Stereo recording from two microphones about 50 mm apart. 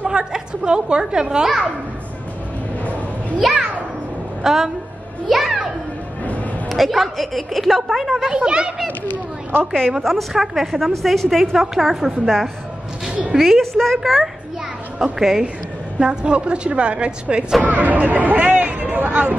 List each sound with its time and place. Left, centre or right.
0.0 s a child's voice: centre
3.3 s a woman's voice: centre
5.3 s music: centre
6.7 s a woman's voice: centre
8.3 s a woman's voice: centre
10.0 s a woman's voice: centre; by 17.5 s right
17.6 s a sound: right